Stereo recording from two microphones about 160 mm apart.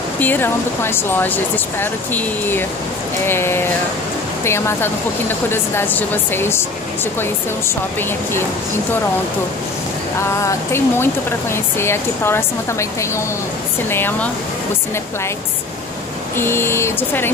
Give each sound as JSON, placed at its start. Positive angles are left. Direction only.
{"t": 0.2, "sound": "a woman's voice", "side_deg": 10}
{"t": 10.4, "sound": "a woman's voice", "side_deg": 15}
{"t": 16.3, "sound": "a woman's voice", "side_deg": 15}